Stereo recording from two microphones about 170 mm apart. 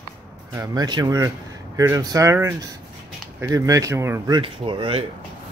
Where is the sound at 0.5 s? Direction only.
20° right (ahead or behind).